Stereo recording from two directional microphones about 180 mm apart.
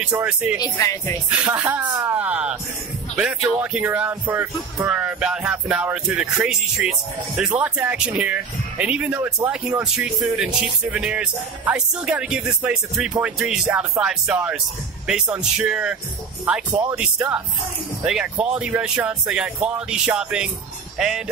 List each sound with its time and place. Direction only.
0.0 s speech: 5° right (ahead or behind)
0.6 s speech: 15° left (ahead or behind)
1.3 s speech: 10° right (ahead or behind)